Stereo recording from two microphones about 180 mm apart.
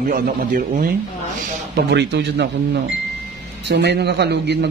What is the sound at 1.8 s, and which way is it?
A man's voice, 70° right (ahead or behind).